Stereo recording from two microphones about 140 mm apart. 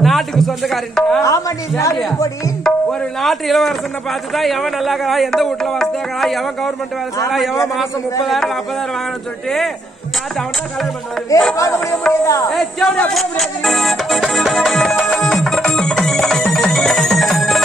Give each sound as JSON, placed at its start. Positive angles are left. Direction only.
{"t": 0.0, "sound": "speech", "side_deg": 0}
{"t": 1.2, "sound": "speech", "side_deg": 20}
{"t": 2.6, "sound": "speech", "side_deg": 0}
{"t": 11.5, "sound": "speech", "side_deg": 20}
{"t": 12.4, "sound": "music", "side_deg": 5}